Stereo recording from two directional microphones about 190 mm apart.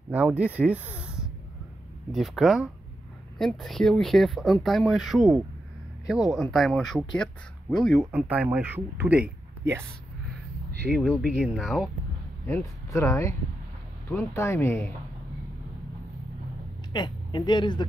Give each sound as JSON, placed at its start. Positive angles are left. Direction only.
{"t": 0.1, "sound": "speech", "side_deg": -5}
{"t": 0.6, "sound": "a sound", "side_deg": -5}
{"t": 2.1, "sound": "speech", "side_deg": 0}
{"t": 10.9, "sound": "speech", "side_deg": -5}
{"t": 12.4, "sound": "speech", "side_deg": 15}
{"t": 16.9, "sound": "speech", "side_deg": 25}